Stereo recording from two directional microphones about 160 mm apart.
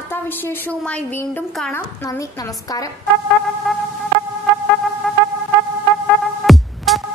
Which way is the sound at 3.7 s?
Centre (ahead or behind).